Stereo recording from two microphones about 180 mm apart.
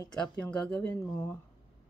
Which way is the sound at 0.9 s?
15° left (ahead or behind).